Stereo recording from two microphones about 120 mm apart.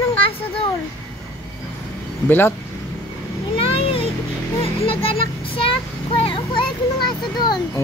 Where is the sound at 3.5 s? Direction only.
50° left (ahead or behind).